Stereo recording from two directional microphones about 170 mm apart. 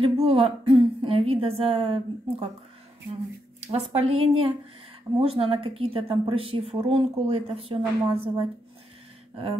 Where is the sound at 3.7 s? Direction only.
35° right (ahead or behind).